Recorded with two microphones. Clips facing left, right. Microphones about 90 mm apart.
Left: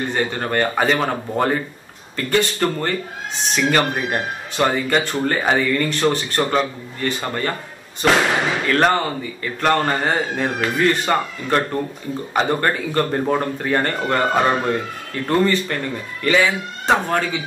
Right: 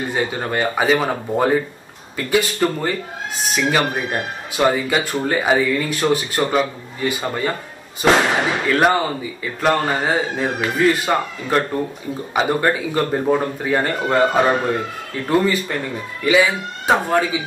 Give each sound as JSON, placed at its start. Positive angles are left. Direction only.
{"t": 0.0, "sound": "speech", "side_deg": -5}